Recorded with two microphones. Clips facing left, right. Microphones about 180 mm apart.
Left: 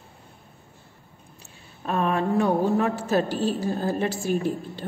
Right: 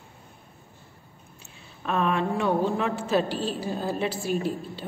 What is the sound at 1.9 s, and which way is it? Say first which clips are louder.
A woman's voice: left 1 dB; 40° left (ahead or behind).